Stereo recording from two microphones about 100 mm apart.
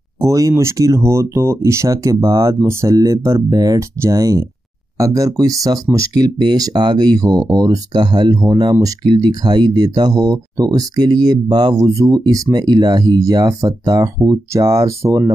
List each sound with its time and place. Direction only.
0.2 s speech: 35° right (ahead or behind)